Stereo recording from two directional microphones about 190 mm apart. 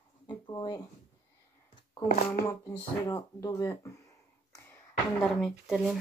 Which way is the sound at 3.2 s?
15° left (ahead or behind).